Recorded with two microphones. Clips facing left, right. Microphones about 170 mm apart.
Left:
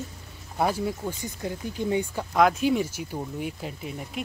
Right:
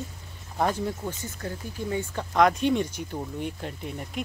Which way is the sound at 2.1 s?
5° left (ahead or behind).